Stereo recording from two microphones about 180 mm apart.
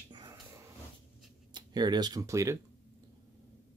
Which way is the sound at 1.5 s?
25° right (ahead or behind).